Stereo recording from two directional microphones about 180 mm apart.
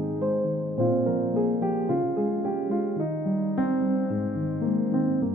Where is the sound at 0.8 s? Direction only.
10° right (ahead or behind).